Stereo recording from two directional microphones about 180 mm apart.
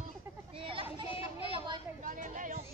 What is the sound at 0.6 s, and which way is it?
Children playing, 30° right (ahead or behind).